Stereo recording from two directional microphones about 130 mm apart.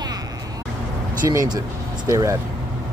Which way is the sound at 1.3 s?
25° right (ahead or behind).